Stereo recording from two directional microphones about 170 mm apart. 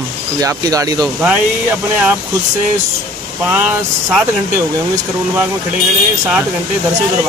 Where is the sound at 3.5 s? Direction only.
10° right (ahead or behind).